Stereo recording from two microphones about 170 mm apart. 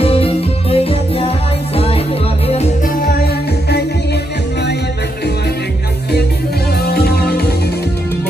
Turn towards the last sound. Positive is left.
turn(degrees=70)  # may be behind; listen again after turning